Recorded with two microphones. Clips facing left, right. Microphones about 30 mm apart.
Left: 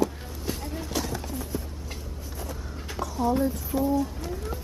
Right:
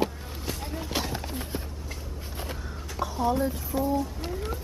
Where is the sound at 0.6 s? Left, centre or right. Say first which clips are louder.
Right 2 dB; right.